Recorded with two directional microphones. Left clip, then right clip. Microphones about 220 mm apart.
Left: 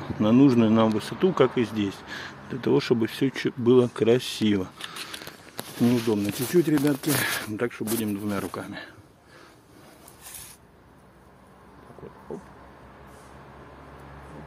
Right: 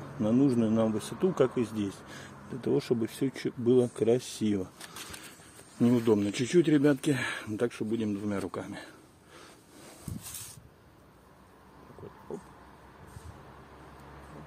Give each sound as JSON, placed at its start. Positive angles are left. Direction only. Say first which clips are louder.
{"t": 0.2, "sound": "speech", "louder": "left 7 dB", "side_deg": 5}
{"t": 5.9, "sound": "speech", "louder": "left 1 dB", "side_deg": -15}
{"t": 6.3, "sound": "speech", "louder": "left 2 dB", "side_deg": -5}
{"t": 8.1, "sound": "speech", "louder": "left 4 dB", "side_deg": 0}
{"t": 8.5, "sound": "speech", "louder": "left 4 dB", "side_deg": -10}
{"t": 10.2, "sound": "spray", "louder": "left 4 dB", "side_deg": -15}